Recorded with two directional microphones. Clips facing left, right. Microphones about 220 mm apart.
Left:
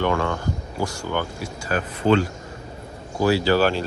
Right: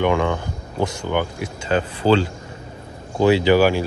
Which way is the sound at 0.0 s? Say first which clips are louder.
Right 3 dB; 15° right (ahead or behind).